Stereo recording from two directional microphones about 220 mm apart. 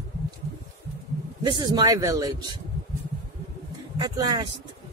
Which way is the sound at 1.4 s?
20° right (ahead or behind).